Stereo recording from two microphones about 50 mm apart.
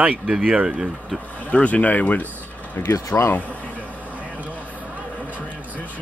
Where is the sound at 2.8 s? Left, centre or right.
Left.